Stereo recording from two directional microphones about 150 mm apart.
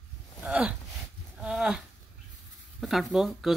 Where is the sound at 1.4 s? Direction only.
5° right (ahead or behind).